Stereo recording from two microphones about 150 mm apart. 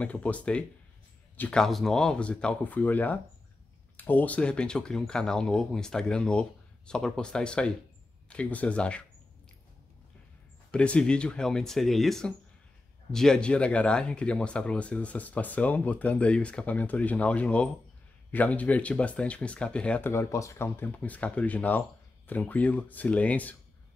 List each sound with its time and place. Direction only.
0.0 s speech: 10° left (ahead or behind)
10.7 s speech: 5° left (ahead or behind)